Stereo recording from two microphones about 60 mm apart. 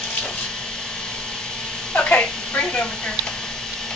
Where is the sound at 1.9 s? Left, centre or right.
Left.